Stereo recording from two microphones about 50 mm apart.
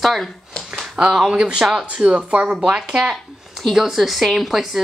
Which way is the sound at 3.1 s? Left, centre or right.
Centre.